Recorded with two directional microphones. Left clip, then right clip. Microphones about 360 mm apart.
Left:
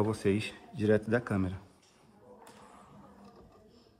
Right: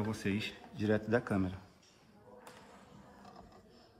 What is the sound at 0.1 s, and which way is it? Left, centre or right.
A man's voice, centre.